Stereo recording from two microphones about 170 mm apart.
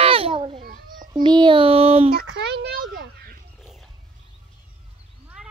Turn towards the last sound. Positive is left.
turn(degrees=0)  # may be behind; listen again after turning